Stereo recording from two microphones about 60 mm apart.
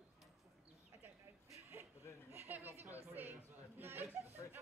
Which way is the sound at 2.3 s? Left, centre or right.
Right.